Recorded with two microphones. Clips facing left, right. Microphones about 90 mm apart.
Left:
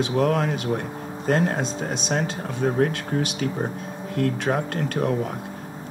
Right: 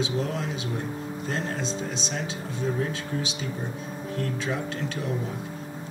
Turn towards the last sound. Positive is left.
turn(degrees=55)  # may be behind; listen again after turning